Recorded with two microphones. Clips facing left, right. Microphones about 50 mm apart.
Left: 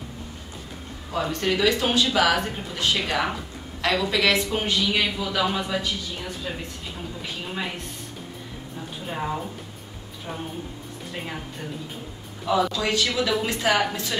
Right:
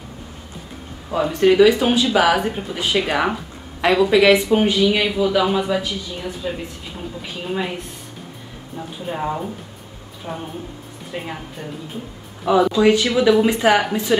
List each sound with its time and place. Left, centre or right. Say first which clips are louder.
1.1 s speech: right 10 dB; centre
9.0 s speech: right 5 dB; centre
11.1 s speech: right 5 dB; centre
12.4 s speech: right 8 dB; centre